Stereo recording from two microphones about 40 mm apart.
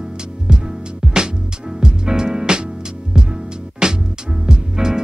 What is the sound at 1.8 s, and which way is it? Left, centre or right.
Music, centre.